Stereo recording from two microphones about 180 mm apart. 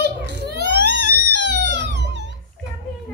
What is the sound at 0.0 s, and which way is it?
Crying, 70° right (ahead or behind).